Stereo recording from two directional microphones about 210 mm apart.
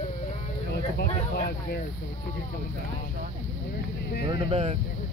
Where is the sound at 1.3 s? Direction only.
45° left (ahead or behind).